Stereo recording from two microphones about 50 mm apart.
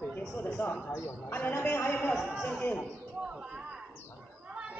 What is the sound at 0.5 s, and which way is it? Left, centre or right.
Speech, left.